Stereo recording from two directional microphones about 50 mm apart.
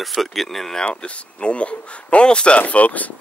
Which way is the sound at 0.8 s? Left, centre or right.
Left.